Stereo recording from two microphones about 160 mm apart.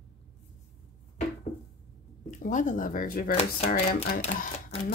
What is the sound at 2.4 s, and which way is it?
Speech, 50° left (ahead or behind).